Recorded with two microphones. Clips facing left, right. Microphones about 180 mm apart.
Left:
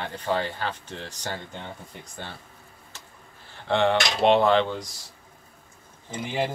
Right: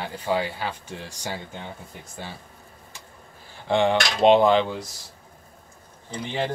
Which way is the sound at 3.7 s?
15° right (ahead or behind).